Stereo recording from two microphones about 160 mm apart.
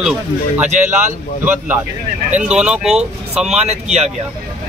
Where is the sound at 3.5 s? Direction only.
45° right (ahead or behind).